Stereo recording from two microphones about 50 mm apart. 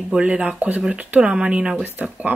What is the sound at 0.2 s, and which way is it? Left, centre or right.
Speech, right.